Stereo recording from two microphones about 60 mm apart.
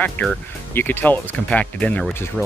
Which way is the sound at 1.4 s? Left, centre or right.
Left.